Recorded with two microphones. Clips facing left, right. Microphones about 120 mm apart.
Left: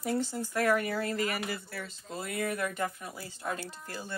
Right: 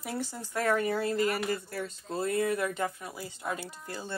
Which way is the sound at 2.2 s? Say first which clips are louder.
Right 4 dB; 30° right (ahead or behind).